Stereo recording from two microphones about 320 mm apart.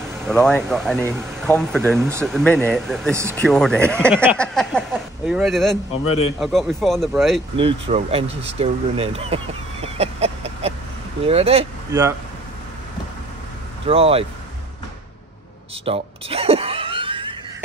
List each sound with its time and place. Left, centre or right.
0.2 s speech: centre
7.5 s speech: centre
13.8 s speech: centre
15.8 s a sound: centre